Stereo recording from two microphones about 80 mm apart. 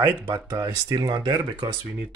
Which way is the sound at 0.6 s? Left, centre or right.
Right.